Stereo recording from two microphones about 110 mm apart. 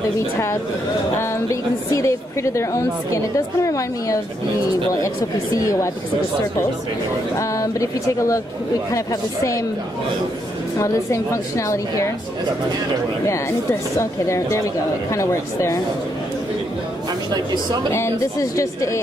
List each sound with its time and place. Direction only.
1.5 s a woman's voice: 30° left (ahead or behind)
7.3 s a woman's voice: 30° left (ahead or behind)
10.8 s a woman's voice: 25° left (ahead or behind)
13.9 s a woman's voice: 25° left (ahead or behind)
17.9 s a woman's voice: 25° left (ahead or behind)